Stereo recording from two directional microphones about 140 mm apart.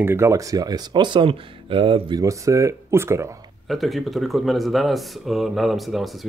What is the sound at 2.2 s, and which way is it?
Speech, 20° right (ahead or behind).